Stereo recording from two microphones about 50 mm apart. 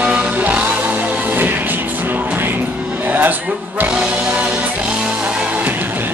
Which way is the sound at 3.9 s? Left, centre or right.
Right.